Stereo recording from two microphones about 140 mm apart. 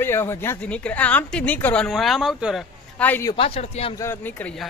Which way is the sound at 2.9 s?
10° left (ahead or behind).